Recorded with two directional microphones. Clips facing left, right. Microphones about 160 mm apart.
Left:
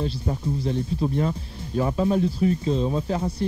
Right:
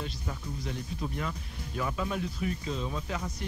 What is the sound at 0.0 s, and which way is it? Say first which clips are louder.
Speech: left 11 dB; 30° left (ahead or behind).